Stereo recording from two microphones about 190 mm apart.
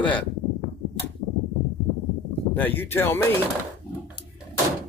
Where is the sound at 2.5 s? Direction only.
10° left (ahead or behind).